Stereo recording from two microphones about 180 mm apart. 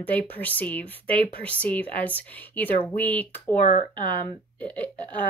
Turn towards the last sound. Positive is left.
turn(degrees=10)  # may be behind; listen again after turning